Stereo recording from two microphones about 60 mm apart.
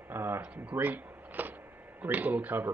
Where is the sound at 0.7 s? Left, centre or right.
Right.